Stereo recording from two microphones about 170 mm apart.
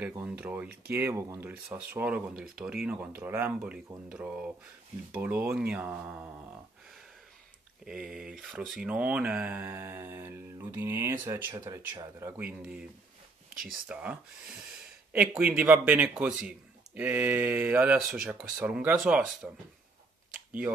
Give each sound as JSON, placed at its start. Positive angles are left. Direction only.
{"t": 0.2, "sound": "a man's voice", "side_deg": -10}
{"t": 5.1, "sound": "a man's voice", "side_deg": -10}
{"t": 7.8, "sound": "a man's voice", "side_deg": -5}
{"t": 12.3, "sound": "a man's voice", "side_deg": -10}
{"t": 15.1, "sound": "a man's voice", "side_deg": -10}